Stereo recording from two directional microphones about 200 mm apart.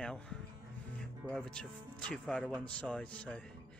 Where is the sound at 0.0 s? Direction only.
5° left (ahead or behind).